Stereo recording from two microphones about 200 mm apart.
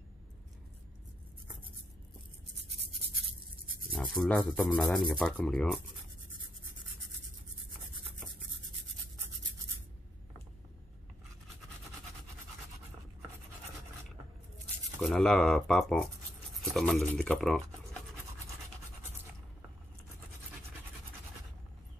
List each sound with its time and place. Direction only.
3.9 s speech: centre (ahead or behind)
15.0 s speech: centre (ahead or behind)